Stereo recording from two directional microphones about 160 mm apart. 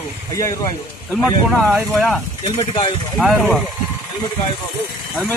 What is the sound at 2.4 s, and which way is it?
Speech, 40° left (ahead or behind).